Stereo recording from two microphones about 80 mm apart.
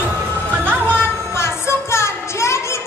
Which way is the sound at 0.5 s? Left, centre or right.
Right.